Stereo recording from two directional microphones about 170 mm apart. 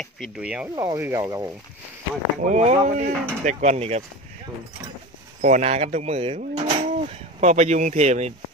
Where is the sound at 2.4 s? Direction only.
40° right (ahead or behind).